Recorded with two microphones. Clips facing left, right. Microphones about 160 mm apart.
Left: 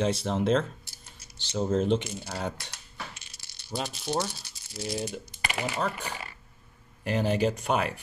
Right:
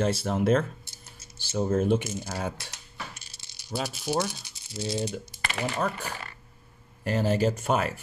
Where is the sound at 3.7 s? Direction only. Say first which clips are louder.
Right 2 dB; 5° right (ahead or behind).